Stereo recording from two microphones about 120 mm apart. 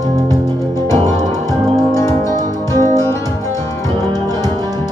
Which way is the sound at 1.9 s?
25° left (ahead or behind).